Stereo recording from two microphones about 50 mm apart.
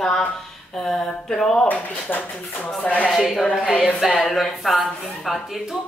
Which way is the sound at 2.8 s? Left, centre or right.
Left.